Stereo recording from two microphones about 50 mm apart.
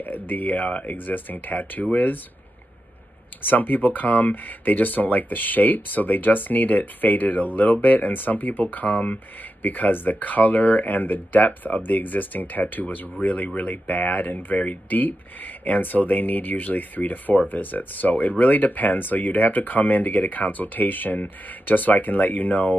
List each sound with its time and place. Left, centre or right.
0.0 s speech: left
3.4 s speech: left